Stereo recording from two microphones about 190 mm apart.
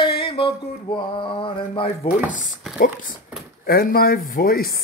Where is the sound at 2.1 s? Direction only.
5° right (ahead or behind).